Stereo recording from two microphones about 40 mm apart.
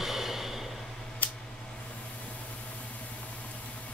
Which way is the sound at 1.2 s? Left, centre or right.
Left.